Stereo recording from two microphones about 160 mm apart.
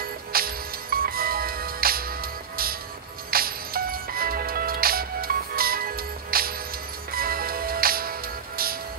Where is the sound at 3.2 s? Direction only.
65° right (ahead or behind).